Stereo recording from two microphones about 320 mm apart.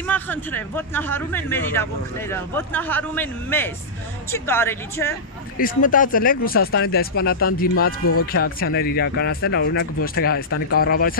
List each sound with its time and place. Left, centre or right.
0.0 s speech: centre
5.6 s speech: left